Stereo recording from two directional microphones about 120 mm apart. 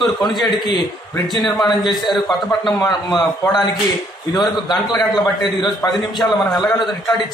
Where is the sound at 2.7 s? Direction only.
35° left (ahead or behind).